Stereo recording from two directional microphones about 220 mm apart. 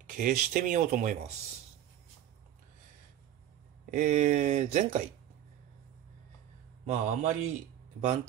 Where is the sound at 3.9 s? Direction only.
35° right (ahead or behind).